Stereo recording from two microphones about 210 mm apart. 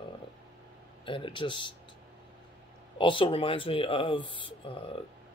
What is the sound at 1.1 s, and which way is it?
Speech, 25° left (ahead or behind).